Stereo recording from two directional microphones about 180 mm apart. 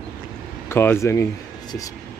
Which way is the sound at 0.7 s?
15° left (ahead or behind).